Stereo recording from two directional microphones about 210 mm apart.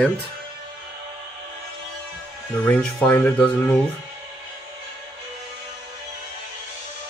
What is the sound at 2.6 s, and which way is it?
Speech, 5° left (ahead or behind).